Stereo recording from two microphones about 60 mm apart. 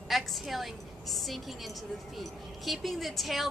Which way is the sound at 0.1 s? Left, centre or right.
Centre.